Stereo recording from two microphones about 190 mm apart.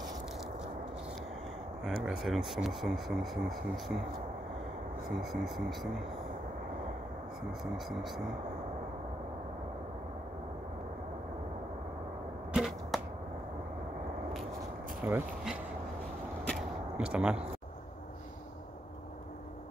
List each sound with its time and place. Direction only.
1.9 s speech: centre (ahead or behind)
5.2 s speech: centre (ahead or behind)
7.7 s speech: centre (ahead or behind)
12.5 s arrow: centre (ahead or behind)
15.0 s speech: 10° right (ahead or behind)
16.9 s speech: 5° right (ahead or behind)